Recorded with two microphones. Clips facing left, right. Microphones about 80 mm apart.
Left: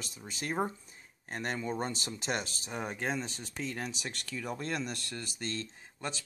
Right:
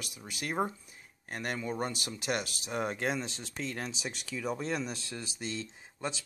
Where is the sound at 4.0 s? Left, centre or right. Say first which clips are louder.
Right 2 dB; centre.